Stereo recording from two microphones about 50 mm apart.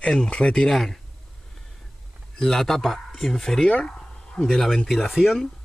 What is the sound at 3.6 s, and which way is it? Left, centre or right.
Speech, centre.